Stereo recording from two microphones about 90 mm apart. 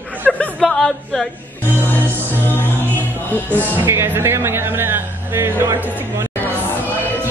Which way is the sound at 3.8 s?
30° right (ahead or behind).